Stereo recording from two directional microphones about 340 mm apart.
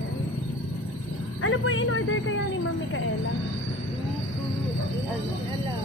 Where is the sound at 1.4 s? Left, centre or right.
Left.